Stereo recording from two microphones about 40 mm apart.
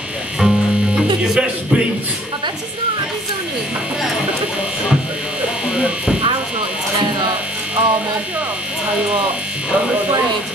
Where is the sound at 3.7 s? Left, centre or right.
Right.